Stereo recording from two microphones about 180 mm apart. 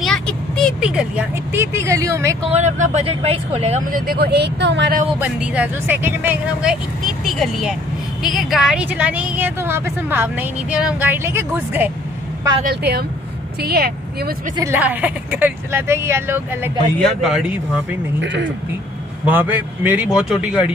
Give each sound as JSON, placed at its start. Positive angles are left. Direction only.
{"t": 0.7, "sound": "a woman's voice", "side_deg": -5}
{"t": 2.5, "sound": "speech", "side_deg": -40}
{"t": 3.9, "sound": "speech", "side_deg": -60}
{"t": 5.2, "sound": "a woman's voice", "side_deg": -5}
{"t": 12.6, "sound": "speech", "side_deg": -60}
{"t": 14.6, "sound": "a woman's voice", "side_deg": -10}
{"t": 17.0, "sound": "a man's voice", "side_deg": 0}
{"t": 18.2, "sound": "speech", "side_deg": -85}
{"t": 19.2, "sound": "a woman's voice", "side_deg": -10}